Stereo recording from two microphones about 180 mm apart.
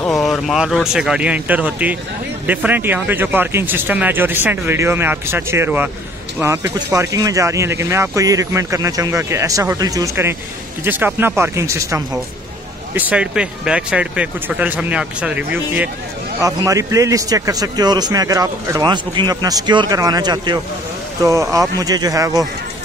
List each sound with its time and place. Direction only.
0.0 s speech: centre (ahead or behind); by 12.0 s 15° right (ahead or behind)
12.9 s a man's voice: 5° right (ahead or behind)